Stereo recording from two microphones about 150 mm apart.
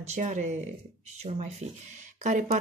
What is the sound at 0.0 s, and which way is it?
Speech, 50° right (ahead or behind).